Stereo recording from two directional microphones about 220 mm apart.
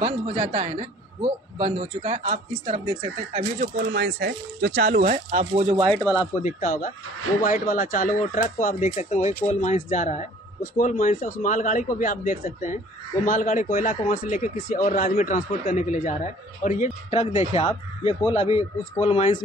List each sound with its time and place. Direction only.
0.0 s a woman's voice: 30° right (ahead or behind)
6.4 s speech: 35° left (ahead or behind)